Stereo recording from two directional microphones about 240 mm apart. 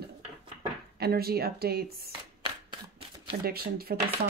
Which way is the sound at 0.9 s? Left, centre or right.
Right.